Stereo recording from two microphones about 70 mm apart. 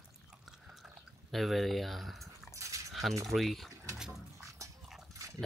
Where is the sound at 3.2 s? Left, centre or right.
Centre.